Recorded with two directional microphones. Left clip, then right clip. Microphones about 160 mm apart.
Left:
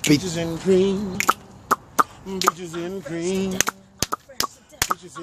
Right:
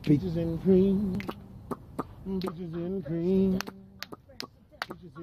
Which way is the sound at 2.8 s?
50° right (ahead or behind).